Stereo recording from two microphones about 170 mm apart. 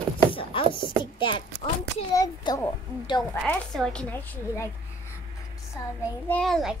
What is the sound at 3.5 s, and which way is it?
Speech, 10° left (ahead or behind).